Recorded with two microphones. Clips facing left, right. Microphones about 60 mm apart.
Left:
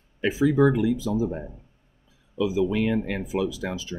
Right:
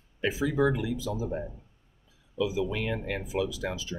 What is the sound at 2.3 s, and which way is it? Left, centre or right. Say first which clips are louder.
Speech: left 6 dB; left.